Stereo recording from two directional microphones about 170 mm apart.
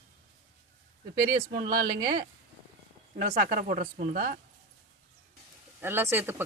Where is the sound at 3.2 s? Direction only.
50° right (ahead or behind).